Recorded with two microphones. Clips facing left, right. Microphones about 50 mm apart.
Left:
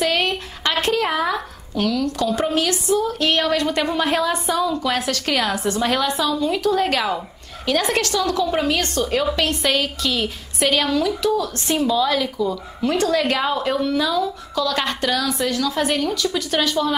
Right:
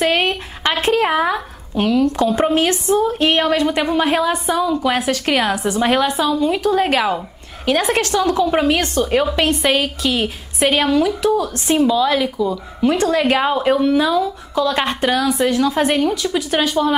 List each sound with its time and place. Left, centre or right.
0.0 s speech: right